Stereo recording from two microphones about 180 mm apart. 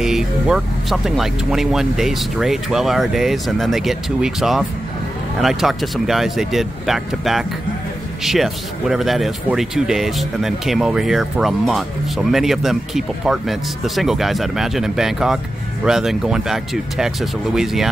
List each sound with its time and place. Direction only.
0.0 s speech: centre (ahead or behind)